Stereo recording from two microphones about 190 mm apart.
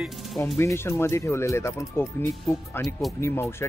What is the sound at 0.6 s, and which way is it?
Speech, 15° left (ahead or behind).